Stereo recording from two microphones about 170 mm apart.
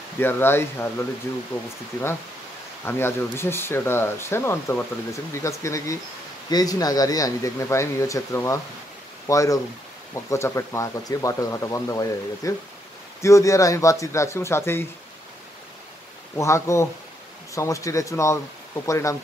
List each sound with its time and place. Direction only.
0.2 s speech: 15° left (ahead or behind)
2.8 s speech: 15° left (ahead or behind)
16.3 s speech: 15° left (ahead or behind)